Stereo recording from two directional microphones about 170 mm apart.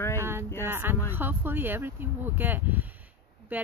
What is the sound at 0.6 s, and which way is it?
Speech, 10° right (ahead or behind).